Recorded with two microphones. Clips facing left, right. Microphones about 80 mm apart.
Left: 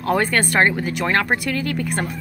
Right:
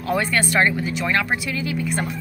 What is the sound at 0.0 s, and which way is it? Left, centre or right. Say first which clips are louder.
A woman's voice: left 2 dB; left.